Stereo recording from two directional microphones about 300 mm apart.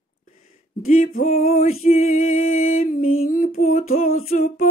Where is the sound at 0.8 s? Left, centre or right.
Left.